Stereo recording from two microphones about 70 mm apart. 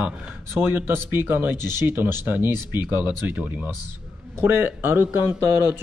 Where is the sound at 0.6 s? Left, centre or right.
Right.